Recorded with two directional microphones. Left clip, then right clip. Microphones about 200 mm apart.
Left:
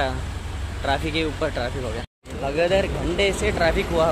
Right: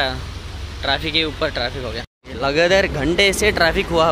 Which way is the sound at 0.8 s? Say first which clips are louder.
Right 4 dB; 5° right (ahead or behind).